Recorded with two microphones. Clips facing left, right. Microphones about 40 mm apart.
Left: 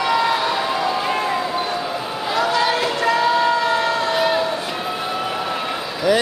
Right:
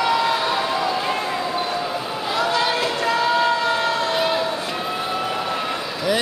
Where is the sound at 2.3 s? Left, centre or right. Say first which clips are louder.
Left 2 dB; left.